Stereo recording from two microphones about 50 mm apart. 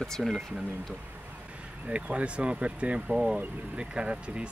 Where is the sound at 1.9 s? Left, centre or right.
Right.